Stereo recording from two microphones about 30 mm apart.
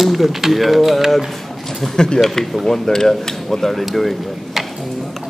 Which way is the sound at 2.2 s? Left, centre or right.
Centre.